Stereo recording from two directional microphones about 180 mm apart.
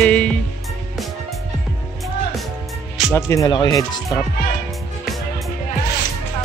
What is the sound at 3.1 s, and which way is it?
Speech, 15° left (ahead or behind).